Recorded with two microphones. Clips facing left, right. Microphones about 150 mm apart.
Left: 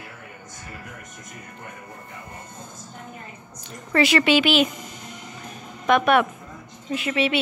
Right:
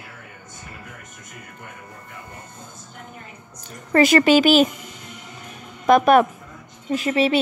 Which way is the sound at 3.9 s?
45° right (ahead or behind).